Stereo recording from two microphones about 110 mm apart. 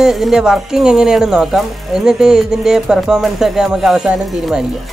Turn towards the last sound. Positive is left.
turn(degrees=-10)  # may be behind; listen again after turning